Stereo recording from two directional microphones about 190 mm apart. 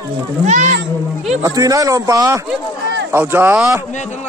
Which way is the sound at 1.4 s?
20° right (ahead or behind).